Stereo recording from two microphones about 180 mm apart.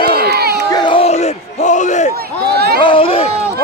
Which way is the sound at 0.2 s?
60° right (ahead or behind).